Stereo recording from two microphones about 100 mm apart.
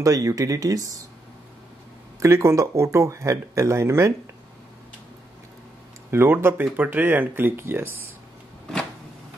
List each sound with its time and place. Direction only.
0.0 s speech: 35° right (ahead or behind)
2.1 s speech: 30° right (ahead or behind)
6.0 s speech: 25° right (ahead or behind)